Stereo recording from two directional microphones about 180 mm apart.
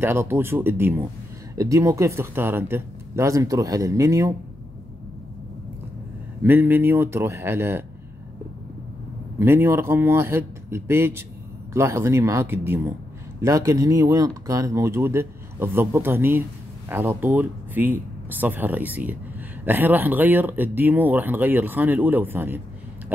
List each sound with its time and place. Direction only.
0.0 s speech: 15° right (ahead or behind)
6.4 s speech: 10° right (ahead or behind)
9.4 s speech: 15° right (ahead or behind)